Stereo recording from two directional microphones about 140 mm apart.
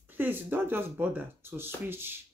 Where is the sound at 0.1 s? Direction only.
15° right (ahead or behind).